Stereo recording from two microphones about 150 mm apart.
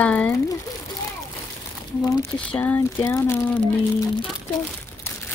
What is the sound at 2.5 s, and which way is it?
Speech, 10° left (ahead or behind).